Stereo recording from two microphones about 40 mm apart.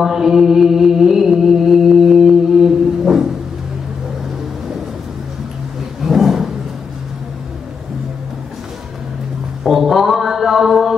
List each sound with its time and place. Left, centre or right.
0.0 s mantra: centre
5.9 s a sound: centre
9.7 s mantra: centre